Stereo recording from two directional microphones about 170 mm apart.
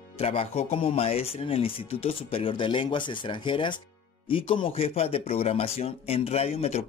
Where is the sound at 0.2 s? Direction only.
35° left (ahead or behind).